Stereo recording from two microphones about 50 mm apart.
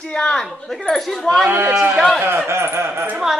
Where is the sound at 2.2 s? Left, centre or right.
Right.